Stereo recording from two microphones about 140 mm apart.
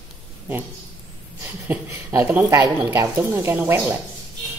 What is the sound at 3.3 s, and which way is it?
Speech, 15° right (ahead or behind).